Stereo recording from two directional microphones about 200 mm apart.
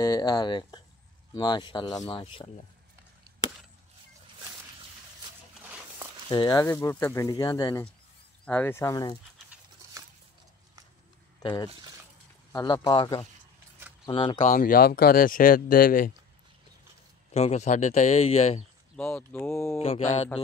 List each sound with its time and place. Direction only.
0.0 s speech: 20° left (ahead or behind)
5.6 s a sound: 5° right (ahead or behind)
6.3 s speech: 20° left (ahead or behind)
11.4 s speech: 20° left (ahead or behind)
14.4 s speech: 40° left (ahead or behind)
17.3 s speech: 35° left (ahead or behind)
18.9 s speech: 5° left (ahead or behind)
19.8 s speech: 30° left (ahead or behind)